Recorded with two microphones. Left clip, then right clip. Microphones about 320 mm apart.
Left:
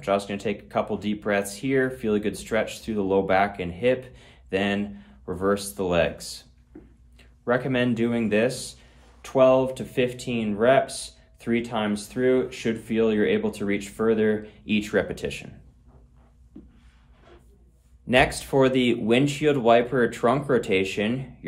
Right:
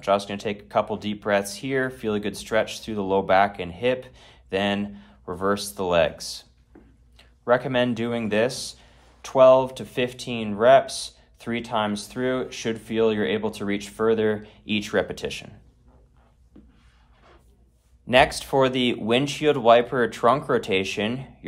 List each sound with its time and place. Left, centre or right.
0.0 s speech: centre
18.0 s speech: centre